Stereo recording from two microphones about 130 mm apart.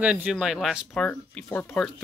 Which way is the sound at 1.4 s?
20° left (ahead or behind).